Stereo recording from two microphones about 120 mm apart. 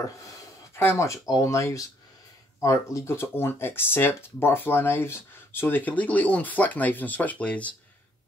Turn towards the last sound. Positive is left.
turn(degrees=10)  # may be behind; listen again after turning